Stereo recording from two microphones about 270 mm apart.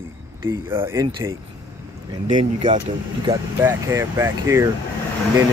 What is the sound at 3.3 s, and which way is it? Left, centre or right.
Speech, centre.